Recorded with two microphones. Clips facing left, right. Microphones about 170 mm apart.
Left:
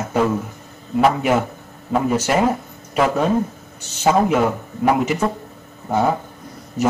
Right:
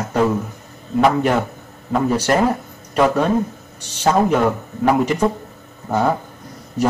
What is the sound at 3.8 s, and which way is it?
Speech, 5° left (ahead or behind).